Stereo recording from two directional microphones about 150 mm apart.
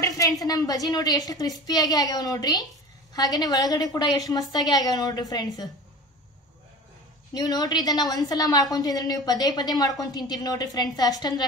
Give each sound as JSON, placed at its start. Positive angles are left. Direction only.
{"t": 0.4, "sound": "a woman's voice", "side_deg": 25}
{"t": 7.3, "sound": "a woman's voice", "side_deg": 25}